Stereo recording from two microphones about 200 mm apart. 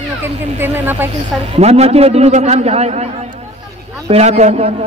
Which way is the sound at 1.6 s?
30° right (ahead or behind).